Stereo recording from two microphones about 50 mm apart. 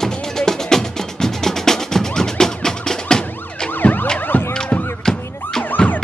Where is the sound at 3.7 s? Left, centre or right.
Left.